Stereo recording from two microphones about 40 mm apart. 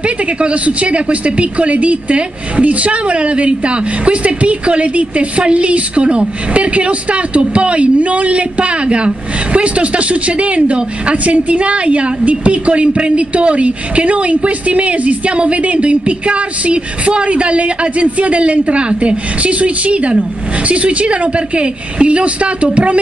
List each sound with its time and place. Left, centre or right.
0.0 s a woman's voice: right